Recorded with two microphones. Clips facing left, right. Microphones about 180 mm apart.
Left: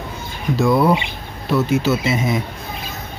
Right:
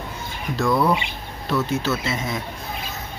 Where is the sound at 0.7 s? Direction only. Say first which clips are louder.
Left 4 dB; 20° left (ahead or behind).